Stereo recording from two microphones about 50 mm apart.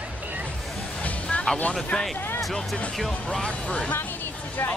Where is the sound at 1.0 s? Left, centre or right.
Left.